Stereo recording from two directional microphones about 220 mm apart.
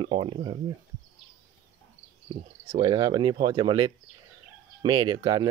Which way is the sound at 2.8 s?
20° right (ahead or behind).